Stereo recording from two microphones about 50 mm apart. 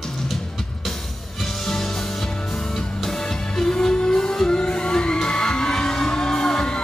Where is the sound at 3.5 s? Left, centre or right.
Centre.